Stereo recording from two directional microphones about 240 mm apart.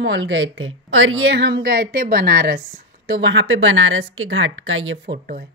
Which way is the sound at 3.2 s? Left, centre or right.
Right.